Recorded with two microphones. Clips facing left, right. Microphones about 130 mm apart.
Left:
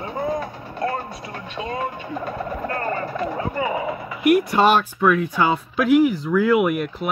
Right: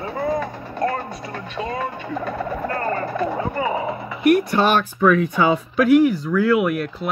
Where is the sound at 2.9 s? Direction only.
45° right (ahead or behind).